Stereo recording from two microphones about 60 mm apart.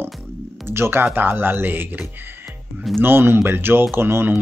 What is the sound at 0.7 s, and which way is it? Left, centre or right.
Speech, right.